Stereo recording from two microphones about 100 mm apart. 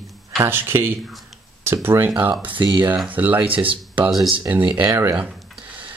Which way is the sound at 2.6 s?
50° right (ahead or behind).